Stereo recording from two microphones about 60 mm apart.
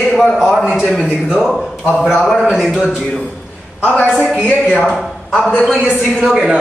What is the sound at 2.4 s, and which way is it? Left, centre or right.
Speech, centre.